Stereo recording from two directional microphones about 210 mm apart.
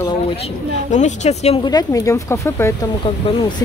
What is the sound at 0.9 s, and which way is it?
Speech, 35° left (ahead or behind).